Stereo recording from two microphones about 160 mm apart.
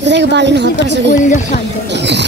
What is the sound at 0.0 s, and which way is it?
A woman's voice, 90° right.